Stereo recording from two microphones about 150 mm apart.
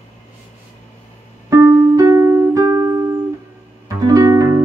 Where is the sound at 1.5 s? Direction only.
25° right (ahead or behind).